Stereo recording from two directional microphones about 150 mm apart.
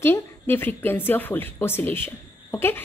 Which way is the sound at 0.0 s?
15° left (ahead or behind).